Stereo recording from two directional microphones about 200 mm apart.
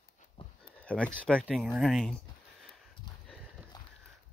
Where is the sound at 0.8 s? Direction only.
5° left (ahead or behind).